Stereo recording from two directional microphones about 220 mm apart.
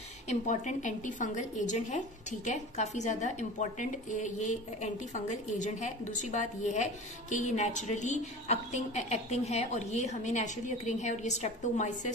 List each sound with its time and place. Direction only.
0.3 s a woman's voice: 35° left (ahead or behind)